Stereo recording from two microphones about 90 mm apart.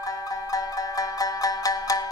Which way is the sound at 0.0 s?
40° left (ahead or behind).